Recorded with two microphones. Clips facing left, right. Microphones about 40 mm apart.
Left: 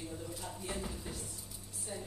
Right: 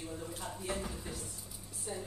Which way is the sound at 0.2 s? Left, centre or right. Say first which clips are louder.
Right 1 dB; right.